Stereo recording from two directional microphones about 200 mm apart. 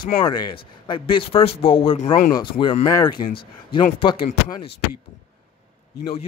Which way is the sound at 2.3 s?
25° left (ahead or behind).